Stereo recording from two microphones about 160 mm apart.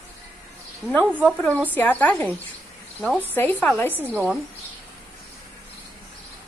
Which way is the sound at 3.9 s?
10° right (ahead or behind).